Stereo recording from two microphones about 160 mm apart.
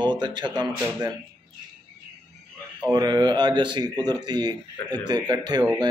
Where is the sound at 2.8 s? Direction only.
25° right (ahead or behind).